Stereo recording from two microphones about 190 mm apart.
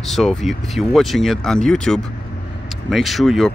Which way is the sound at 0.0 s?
Centre (ahead or behind).